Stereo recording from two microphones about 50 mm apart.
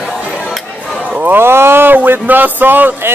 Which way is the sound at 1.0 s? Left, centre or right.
Right.